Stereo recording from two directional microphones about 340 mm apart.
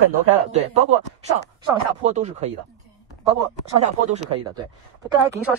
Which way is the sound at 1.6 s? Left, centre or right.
Centre.